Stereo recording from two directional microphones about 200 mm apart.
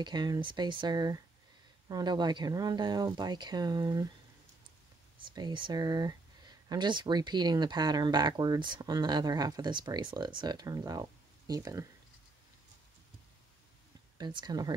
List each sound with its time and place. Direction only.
0.0 s speech: 20° right (ahead or behind)
5.2 s speech: 20° right (ahead or behind)
14.1 s speech: 20° right (ahead or behind)